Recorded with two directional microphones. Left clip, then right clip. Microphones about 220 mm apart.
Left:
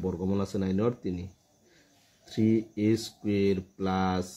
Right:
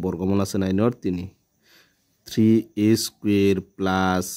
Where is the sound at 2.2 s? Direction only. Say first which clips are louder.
Right 7 dB; 50° right (ahead or behind).